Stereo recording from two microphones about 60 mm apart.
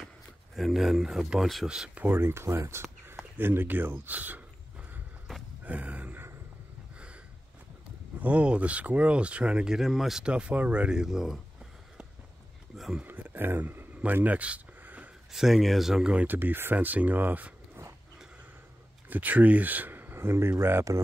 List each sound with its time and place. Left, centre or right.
0.6 s speech: centre
2.0 s speech: right
5.6 s a sound: right
8.2 s speech: right
9.8 s speech: centre
10.2 s speech: centre
13.0 s speech: right
15.3 s speech: centre
16.3 s speech: right
19.0 s speech: right